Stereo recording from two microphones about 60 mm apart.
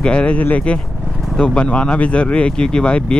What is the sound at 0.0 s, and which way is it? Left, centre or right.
Speech, centre.